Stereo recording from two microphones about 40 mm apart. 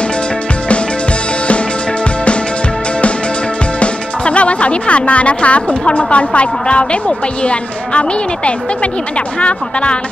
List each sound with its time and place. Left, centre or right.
3.8 s speech: left